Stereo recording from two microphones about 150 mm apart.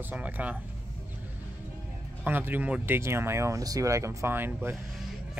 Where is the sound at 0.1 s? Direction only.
10° right (ahead or behind).